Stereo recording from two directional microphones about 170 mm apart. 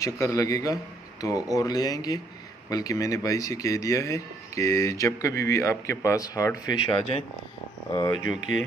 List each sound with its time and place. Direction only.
0.0 s speech: 20° left (ahead or behind)
6.7 s speech: 30° left (ahead or behind)
8.3 s speech: 40° right (ahead or behind)